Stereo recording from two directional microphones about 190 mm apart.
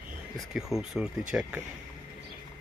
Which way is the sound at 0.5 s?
Centre (ahead or behind).